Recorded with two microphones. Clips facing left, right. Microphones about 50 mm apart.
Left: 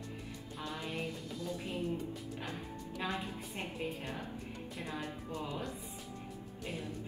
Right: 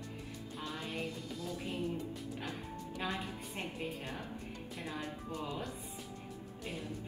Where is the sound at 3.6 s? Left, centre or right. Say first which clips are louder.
Right 1 dB; centre.